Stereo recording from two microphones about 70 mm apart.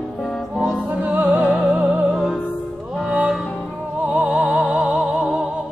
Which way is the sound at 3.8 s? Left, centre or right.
Centre.